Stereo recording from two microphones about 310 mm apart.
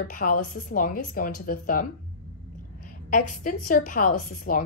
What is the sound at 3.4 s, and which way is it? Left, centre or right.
A woman's voice, left.